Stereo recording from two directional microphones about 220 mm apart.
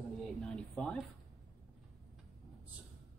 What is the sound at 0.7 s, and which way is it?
Speech, 5° left (ahead or behind).